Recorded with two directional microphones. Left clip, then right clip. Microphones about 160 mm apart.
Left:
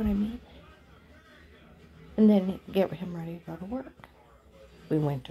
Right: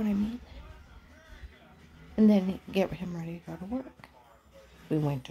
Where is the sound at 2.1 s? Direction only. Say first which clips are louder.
Left 2 dB; 15° right (ahead or behind).